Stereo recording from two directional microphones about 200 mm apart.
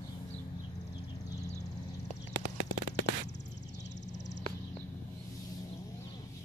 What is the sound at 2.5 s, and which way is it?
Firecracker, 40° right (ahead or behind).